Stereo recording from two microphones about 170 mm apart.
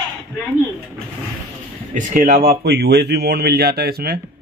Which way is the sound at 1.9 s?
50° right (ahead or behind).